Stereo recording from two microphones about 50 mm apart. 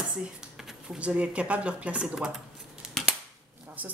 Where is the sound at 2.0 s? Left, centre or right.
Centre.